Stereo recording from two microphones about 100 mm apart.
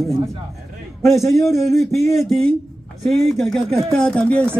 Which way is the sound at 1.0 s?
Centre (ahead or behind).